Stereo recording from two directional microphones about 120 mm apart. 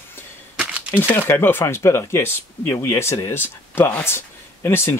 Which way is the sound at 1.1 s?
20° left (ahead or behind).